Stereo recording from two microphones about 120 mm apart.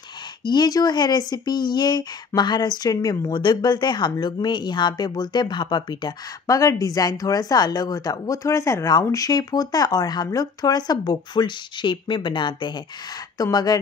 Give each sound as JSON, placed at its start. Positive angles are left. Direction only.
{"t": 0.5, "sound": "speech", "side_deg": 35}